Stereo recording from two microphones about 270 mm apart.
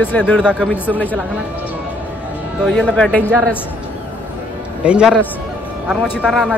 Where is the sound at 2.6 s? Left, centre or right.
Centre.